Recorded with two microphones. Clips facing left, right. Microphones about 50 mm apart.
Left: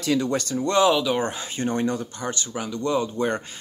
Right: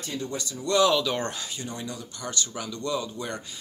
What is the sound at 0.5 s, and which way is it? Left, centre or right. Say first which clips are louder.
Speech: left 2 dB; left.